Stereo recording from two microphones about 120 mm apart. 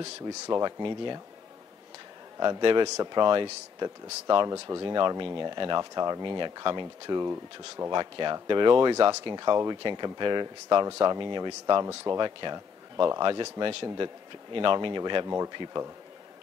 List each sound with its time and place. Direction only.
0.5 s speech: 35° right (ahead or behind)
2.3 s speech: 40° right (ahead or behind)
7.2 s speech: 25° right (ahead or behind)
7.9 s speech: 40° right (ahead or behind)
15.2 s speech: 25° right (ahead or behind)
15.5 s speech: 40° right (ahead or behind)